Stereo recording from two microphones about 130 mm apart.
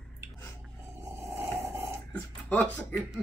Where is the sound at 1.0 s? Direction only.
20° right (ahead or behind).